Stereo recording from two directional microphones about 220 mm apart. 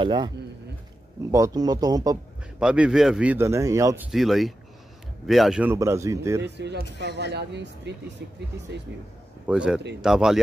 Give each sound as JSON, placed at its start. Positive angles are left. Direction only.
{"t": 0.0, "sound": "a man's voice", "side_deg": -20}
{"t": 1.3, "sound": "a man's voice", "side_deg": -15}
{"t": 2.6, "sound": "a man's voice", "side_deg": -5}
{"t": 6.4, "sound": "speech", "side_deg": -50}
{"t": 9.5, "sound": "speech", "side_deg": -5}